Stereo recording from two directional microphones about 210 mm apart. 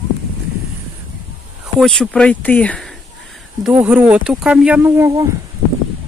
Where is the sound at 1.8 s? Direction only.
Centre (ahead or behind).